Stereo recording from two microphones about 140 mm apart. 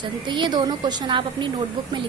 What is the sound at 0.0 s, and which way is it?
A woman's voice, 35° right (ahead or behind).